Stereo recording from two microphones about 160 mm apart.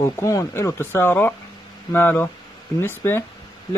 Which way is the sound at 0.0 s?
20° left (ahead or behind).